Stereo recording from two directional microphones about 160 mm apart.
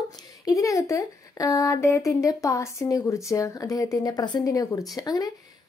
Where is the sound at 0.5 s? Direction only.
20° left (ahead or behind).